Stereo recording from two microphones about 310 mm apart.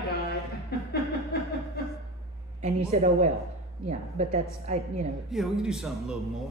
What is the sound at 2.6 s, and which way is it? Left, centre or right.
A woman's voice, right.